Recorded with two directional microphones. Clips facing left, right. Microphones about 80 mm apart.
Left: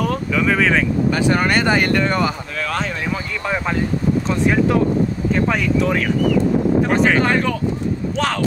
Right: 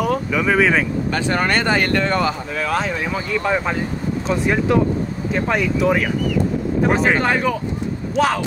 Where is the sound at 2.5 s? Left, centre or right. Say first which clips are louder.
Right 2 dB; centre.